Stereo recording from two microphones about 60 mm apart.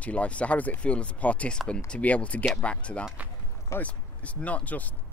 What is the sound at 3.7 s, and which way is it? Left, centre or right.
Speech, left.